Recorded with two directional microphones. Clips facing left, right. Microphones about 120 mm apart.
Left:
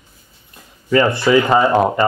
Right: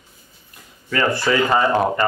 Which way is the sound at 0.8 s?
20° left (ahead or behind).